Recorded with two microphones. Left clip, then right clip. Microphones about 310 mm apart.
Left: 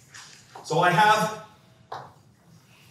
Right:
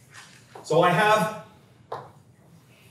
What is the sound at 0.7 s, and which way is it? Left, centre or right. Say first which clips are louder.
Speech: right 2 dB; centre.